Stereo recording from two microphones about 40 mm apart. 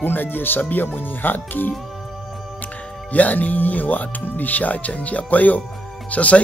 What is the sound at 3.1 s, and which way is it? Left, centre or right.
Speech, left.